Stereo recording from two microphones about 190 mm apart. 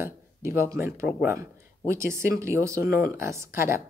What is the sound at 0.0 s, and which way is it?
Speech, 15° right (ahead or behind).